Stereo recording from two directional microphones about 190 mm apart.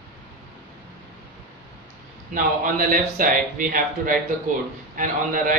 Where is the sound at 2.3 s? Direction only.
45° right (ahead or behind).